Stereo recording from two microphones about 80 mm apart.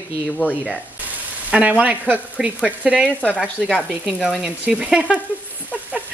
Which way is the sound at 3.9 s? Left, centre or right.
Centre.